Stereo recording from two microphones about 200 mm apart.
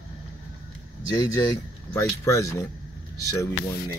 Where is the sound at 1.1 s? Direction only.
15° left (ahead or behind).